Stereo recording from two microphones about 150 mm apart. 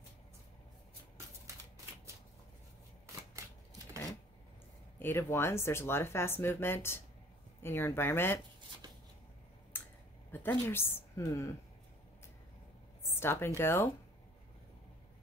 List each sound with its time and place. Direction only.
4.9 s speech: 15° left (ahead or behind)
8.8 s shuffling cards: 25° right (ahead or behind)
9.7 s a sound: 15° left (ahead or behind)
10.3 s a woman's voice: 15° left (ahead or behind)
13.1 s a woman's voice: 15° left (ahead or behind)